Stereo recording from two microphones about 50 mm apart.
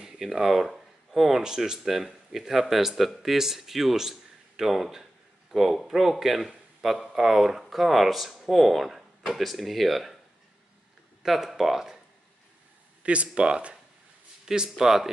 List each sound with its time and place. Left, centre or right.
0.0 s a man's voice: centre
11.2 s speech: centre
13.0 s speech: right